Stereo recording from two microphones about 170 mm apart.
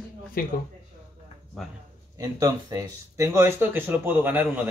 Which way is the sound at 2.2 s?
20° right (ahead or behind).